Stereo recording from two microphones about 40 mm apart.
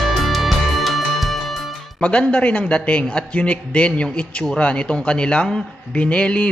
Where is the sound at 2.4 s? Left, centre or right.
Left.